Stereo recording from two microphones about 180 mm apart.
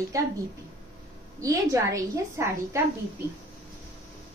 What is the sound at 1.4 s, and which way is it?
A woman's voice, 20° right (ahead or behind).